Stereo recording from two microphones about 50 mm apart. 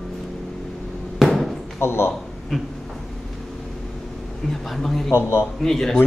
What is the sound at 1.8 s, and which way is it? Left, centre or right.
Speech, left.